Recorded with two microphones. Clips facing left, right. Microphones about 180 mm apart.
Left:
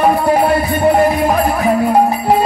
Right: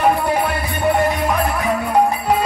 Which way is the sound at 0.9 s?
35° left (ahead or behind).